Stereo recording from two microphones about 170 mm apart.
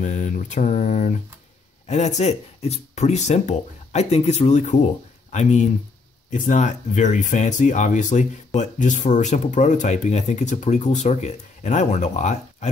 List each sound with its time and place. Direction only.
0.0 s speech: 45° left (ahead or behind)